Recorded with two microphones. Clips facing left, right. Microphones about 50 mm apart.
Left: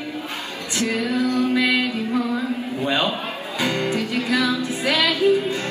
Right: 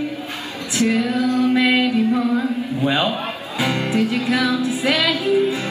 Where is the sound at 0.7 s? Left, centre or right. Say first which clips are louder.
Right 4 dB; right.